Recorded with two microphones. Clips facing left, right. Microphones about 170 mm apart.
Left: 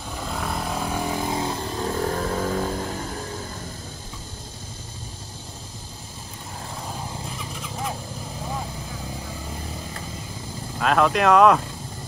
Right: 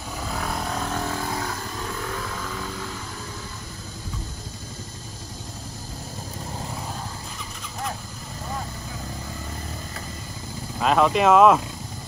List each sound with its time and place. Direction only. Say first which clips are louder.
0.2 s vehicle: left 1 dB; centre (ahead or behind); by 3.1 s 45° left (ahead or behind)
10.8 s speech: right 1 dB; centre (ahead or behind)